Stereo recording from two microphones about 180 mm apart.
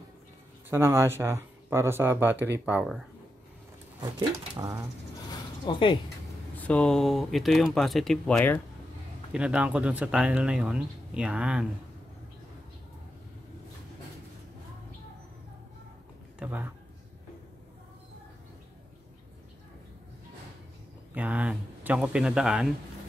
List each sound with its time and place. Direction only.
0.7 s speech: 15° right (ahead or behind)
4.0 s speech: 25° right (ahead or behind)
5.7 s speech: 25° left (ahead or behind)
6.5 s speech: 5° left (ahead or behind)
9.3 s speech: 5° right (ahead or behind)
16.3 s speech: 10° right (ahead or behind)
21.1 s speech: 10° right (ahead or behind)